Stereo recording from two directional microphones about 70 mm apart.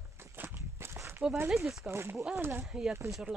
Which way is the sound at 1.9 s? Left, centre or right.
Right.